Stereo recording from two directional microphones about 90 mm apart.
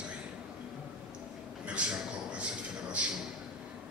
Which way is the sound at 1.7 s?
15° right (ahead or behind).